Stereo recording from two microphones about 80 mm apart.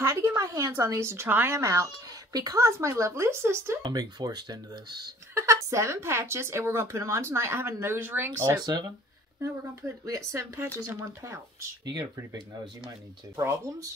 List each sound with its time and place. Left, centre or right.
0.0 s a sound: right
0.4 s a woman's voice: right
1.6 s speech: right
2.6 s a woman's voice: right
3.8 s speech: right
5.3 s a woman's voice: right
8.5 s speech: right
9.4 s a woman's voice: right
11.8 s speech: right